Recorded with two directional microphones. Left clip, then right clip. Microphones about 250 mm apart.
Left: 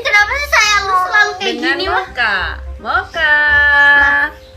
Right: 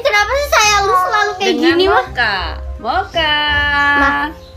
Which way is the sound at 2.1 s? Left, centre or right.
Centre.